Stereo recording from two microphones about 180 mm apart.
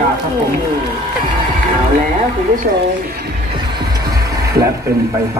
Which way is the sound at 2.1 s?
50° right (ahead or behind).